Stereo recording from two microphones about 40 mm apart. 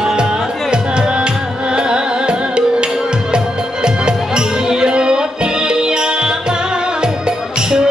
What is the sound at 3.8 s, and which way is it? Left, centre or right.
Music, right.